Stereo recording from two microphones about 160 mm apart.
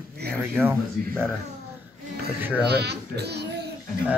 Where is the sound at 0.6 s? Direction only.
15° right (ahead or behind).